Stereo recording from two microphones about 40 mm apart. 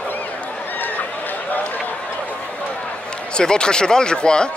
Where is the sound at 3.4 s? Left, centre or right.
Centre.